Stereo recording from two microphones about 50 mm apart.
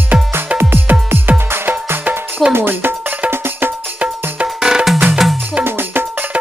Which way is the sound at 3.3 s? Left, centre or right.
Right.